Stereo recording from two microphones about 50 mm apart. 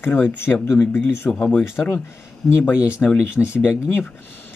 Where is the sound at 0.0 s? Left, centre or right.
Left.